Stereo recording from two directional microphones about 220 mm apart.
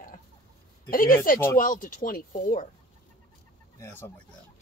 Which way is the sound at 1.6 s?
40° left (ahead or behind).